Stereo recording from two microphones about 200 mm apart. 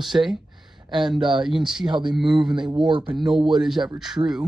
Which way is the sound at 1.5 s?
5° right (ahead or behind).